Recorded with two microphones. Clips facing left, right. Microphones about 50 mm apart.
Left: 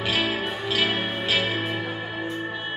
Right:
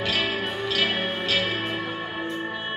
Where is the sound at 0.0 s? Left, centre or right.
Centre.